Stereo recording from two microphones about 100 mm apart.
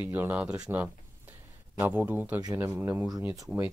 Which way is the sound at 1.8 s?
20° right (ahead or behind).